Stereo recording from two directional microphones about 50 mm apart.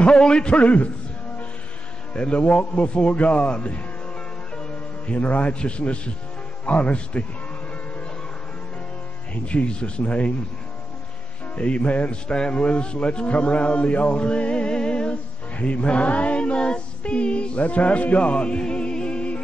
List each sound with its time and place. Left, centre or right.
0.0 s a man's voice: centre
2.1 s a man's voice: left
9.3 s a man's voice: left
11.5 s a man's voice: left